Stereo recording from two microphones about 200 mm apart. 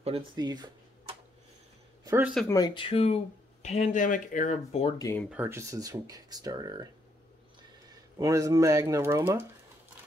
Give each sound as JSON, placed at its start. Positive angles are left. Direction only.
{"t": 0.0, "sound": "speech", "side_deg": -25}
{"t": 2.5, "sound": "speech", "side_deg": 20}
{"t": 4.9, "sound": "speech", "side_deg": 15}
{"t": 5.3, "sound": "speech", "side_deg": -10}
{"t": 8.2, "sound": "speech", "side_deg": -15}